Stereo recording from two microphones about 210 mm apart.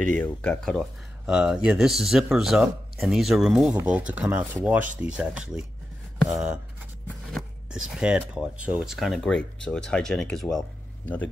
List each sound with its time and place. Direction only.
0.0 s speech: 5° left (ahead or behind)